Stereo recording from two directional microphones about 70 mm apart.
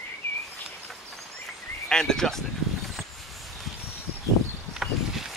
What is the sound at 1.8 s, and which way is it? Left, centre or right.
Speech, centre.